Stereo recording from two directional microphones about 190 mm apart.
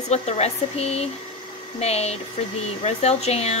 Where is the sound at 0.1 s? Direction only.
35° left (ahead or behind).